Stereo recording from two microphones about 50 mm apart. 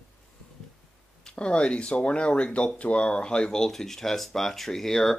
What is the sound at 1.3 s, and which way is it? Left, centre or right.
Speech, left.